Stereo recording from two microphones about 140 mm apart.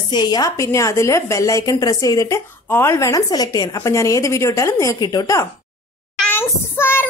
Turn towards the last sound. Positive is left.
turn(degrees=15)  # may be behind; listen again after turning